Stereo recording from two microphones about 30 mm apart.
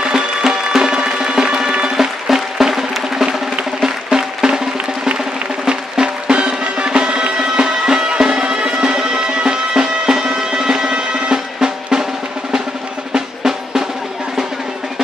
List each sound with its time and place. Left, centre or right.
0.5 s music: right
2.0 s music: centre
5.7 s music: right
6.4 s music: right
13.1 s drum: centre